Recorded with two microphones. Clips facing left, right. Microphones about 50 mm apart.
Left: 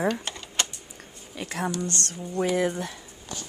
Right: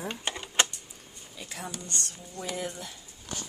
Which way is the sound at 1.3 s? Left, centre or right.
Left.